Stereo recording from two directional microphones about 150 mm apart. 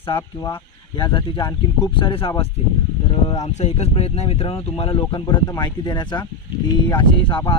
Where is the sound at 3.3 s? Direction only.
45° left (ahead or behind).